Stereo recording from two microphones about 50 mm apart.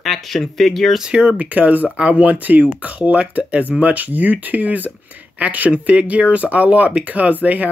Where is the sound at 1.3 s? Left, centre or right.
Right.